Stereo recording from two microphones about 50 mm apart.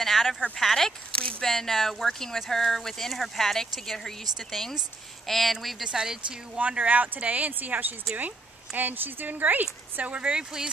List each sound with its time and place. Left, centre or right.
0.0 s a sound: centre
0.6 s speech: centre
5.9 s speech: centre
6.6 s speech: right